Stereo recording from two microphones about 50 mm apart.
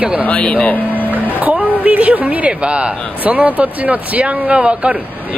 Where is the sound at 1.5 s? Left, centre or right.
Right.